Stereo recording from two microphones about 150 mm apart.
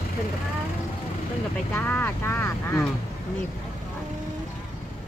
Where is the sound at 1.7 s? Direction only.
15° left (ahead or behind).